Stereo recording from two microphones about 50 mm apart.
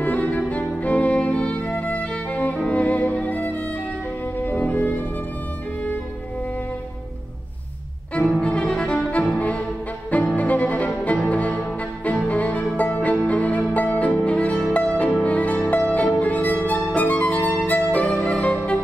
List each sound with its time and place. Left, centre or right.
0.0 s music: left
8.4 s music: centre
10.3 s music: left
18.2 s saxophone: left